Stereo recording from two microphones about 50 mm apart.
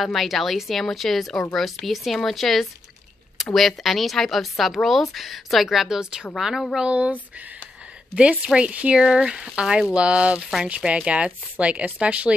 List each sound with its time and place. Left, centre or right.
0.0 s a woman's voice: centre
6.3 s a woman's voice: centre
6.8 s speech: right
8.2 s speech: right